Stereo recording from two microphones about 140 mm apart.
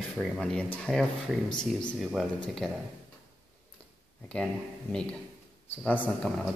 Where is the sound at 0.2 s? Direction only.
5° left (ahead or behind).